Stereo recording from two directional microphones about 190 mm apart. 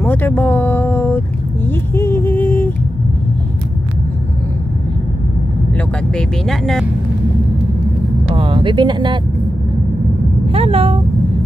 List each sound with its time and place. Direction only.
0.0 s speech: 10° left (ahead or behind)
2.0 s a sound: 10° left (ahead or behind)
6.1 s speech: centre (ahead or behind)
8.3 s speech: 25° right (ahead or behind)
10.5 s speech: 30° right (ahead or behind)